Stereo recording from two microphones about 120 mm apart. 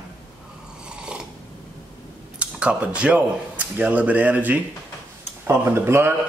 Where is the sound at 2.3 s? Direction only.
10° right (ahead or behind).